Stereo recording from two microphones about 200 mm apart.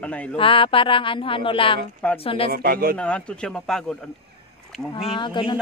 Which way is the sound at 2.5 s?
50° right (ahead or behind).